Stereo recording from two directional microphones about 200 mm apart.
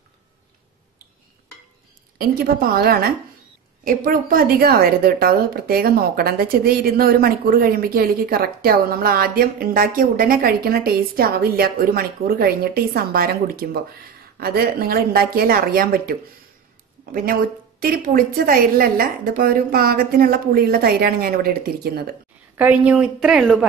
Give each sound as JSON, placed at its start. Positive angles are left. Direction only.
{"t": 2.1, "sound": "a woman's voice", "side_deg": -45}
{"t": 22.6, "sound": "a woman's voice", "side_deg": -5}